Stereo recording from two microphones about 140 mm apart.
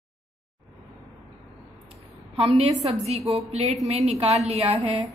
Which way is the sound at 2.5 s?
45° right (ahead or behind).